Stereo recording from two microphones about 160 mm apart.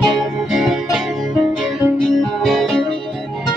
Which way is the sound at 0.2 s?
Centre (ahead or behind).